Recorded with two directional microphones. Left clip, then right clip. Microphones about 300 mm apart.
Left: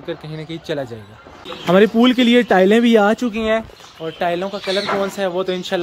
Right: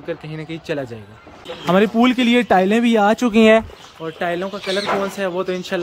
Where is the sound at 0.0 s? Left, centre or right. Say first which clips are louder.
Even; centre.